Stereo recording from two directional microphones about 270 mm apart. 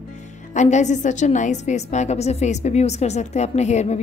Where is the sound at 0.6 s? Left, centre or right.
Left.